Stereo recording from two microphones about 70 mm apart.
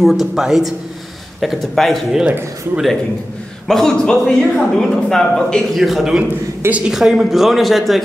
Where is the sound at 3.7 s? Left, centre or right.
Centre.